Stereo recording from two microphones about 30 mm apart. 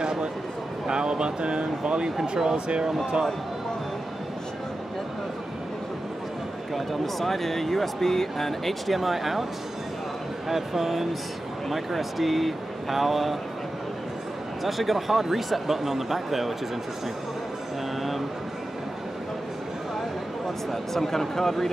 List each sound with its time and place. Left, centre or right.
0.0 s a sound: right
0.8 s speech: right
6.7 s speech: centre
10.5 s speech: centre
14.6 s speech: centre
20.7 s speech: centre